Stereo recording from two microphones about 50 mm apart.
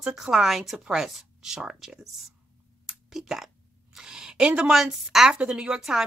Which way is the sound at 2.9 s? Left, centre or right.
Centre.